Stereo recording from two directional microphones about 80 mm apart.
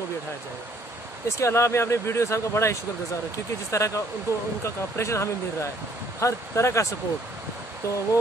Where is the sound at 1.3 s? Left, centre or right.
Left.